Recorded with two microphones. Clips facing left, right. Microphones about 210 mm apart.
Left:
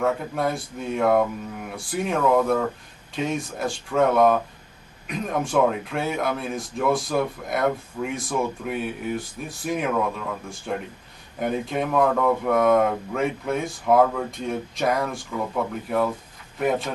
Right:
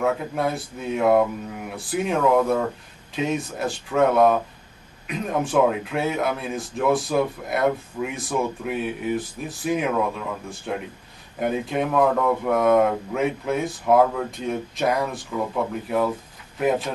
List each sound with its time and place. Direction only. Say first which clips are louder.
0.0 s speech: even; 5° right (ahead or behind)